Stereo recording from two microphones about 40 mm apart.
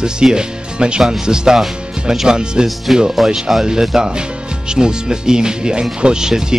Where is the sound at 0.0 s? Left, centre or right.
Centre.